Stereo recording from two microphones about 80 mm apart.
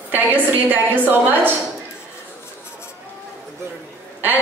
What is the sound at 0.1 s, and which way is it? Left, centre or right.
A woman's voice, right.